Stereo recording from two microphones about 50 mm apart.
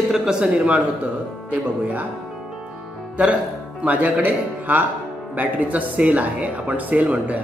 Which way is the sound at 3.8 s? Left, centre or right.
Right.